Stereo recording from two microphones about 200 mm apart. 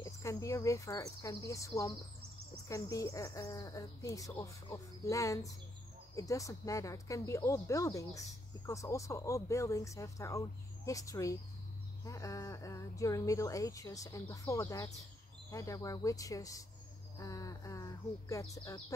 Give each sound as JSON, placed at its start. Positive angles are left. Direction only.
{"t": 0.0, "sound": "speech", "side_deg": 15}